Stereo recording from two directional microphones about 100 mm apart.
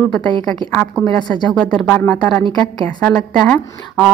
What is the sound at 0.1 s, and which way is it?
A woman's voice, 10° left (ahead or behind).